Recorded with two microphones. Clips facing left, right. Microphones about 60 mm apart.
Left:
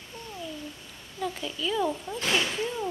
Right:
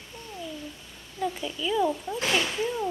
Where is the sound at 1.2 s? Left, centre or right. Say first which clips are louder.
Right 2 dB; centre.